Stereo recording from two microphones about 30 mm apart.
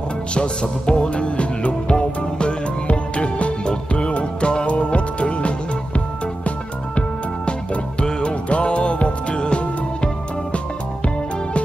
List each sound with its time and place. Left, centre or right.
0.3 s music: left
3.9 s music: left
7.0 s music: left